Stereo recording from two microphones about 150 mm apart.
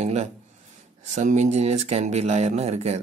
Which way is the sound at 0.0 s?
50° right (ahead or behind).